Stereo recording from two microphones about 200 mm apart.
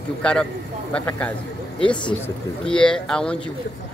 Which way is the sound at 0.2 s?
5° left (ahead or behind).